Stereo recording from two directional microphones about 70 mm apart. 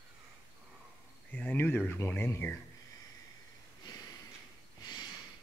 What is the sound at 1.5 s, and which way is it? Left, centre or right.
Speech, left.